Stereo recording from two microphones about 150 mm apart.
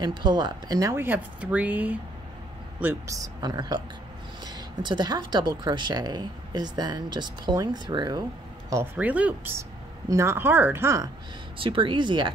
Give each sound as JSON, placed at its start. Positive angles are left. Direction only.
{"t": 0.0, "sound": "speech", "side_deg": -30}
{"t": 8.9, "sound": "speech", "side_deg": -10}
{"t": 11.5, "sound": "speech", "side_deg": -35}